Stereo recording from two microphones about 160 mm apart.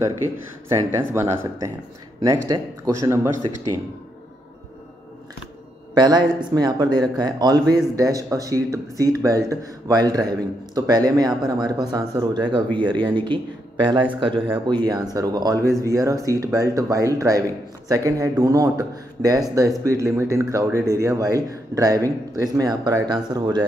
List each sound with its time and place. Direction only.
0.7 s a man's voice: 15° right (ahead or behind)
5.9 s a man's voice: 25° right (ahead or behind)